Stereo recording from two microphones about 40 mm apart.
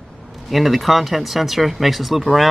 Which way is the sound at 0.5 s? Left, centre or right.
Centre.